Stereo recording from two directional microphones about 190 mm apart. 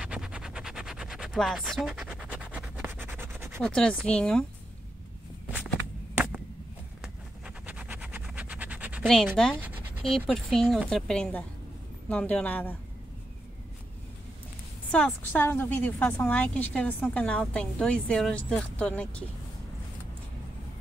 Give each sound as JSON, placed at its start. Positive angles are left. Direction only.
{"t": 0.0, "sound": "a sound", "side_deg": -5}
{"t": 3.2, "sound": "scratch", "side_deg": -10}
{"t": 3.6, "sound": "a woman's voice", "side_deg": 5}
{"t": 7.4, "sound": "a sound", "side_deg": -10}
{"t": 9.0, "sound": "a woman's voice", "side_deg": 0}
{"t": 14.9, "sound": "a woman's voice", "side_deg": 5}